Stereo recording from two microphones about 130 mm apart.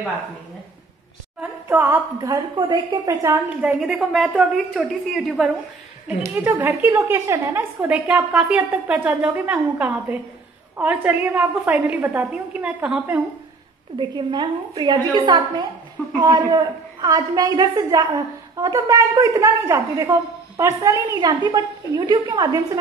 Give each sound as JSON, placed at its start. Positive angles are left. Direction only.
{"t": 1.7, "sound": "a woman's voice", "side_deg": -20}
{"t": 3.4, "sound": "a woman's voice", "side_deg": -5}
{"t": 6.0, "sound": "a woman's voice", "side_deg": -15}
{"t": 13.9, "sound": "a woman's voice", "side_deg": -35}